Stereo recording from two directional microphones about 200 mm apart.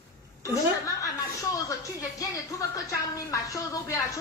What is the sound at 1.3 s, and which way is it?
A woman's voice, 15° left (ahead or behind).